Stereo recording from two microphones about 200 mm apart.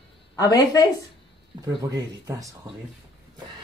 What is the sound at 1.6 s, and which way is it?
Speech, 15° right (ahead or behind).